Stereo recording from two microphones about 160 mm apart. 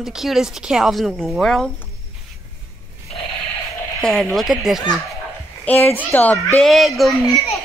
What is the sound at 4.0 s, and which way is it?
Speech, 5° left (ahead or behind).